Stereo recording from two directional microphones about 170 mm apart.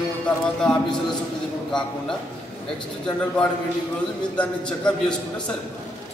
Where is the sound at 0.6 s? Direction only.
5° left (ahead or behind).